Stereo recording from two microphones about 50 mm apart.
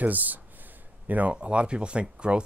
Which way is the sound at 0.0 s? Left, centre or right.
Right.